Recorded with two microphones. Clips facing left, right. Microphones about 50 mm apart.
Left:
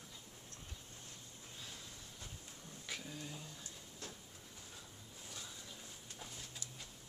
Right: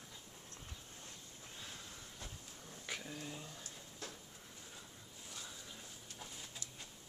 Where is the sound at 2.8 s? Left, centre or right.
Centre.